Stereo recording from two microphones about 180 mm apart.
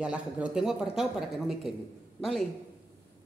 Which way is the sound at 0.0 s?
5° right (ahead or behind).